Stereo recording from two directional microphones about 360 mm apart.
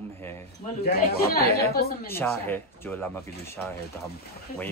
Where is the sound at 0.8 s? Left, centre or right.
Left.